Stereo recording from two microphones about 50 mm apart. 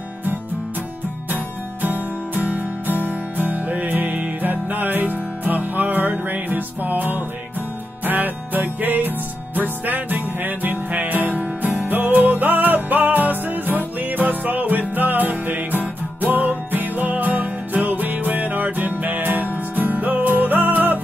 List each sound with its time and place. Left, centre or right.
1.3 s music: right